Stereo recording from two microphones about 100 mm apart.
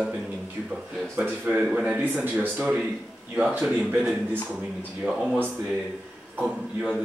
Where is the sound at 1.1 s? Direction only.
20° right (ahead or behind).